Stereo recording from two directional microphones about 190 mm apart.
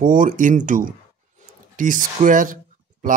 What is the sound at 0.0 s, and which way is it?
Speech, 45° right (ahead or behind).